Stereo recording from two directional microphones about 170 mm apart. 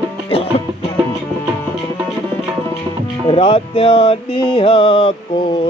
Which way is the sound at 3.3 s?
35° left (ahead or behind).